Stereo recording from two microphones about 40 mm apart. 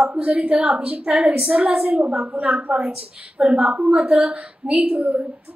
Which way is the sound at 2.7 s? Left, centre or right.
Right.